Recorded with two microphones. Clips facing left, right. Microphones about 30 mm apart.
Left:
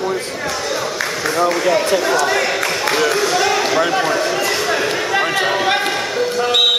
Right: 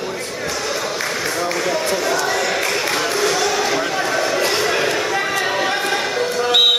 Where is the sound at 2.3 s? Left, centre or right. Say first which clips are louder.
Left 2 dB; left.